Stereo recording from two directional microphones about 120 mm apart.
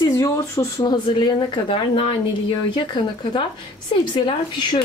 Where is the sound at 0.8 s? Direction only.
40° left (ahead or behind).